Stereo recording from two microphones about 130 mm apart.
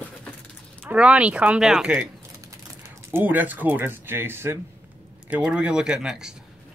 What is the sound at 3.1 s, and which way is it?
Speech, 15° right (ahead or behind).